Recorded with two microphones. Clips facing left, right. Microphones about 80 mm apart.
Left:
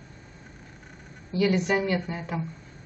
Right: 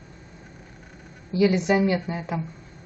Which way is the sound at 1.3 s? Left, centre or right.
Centre.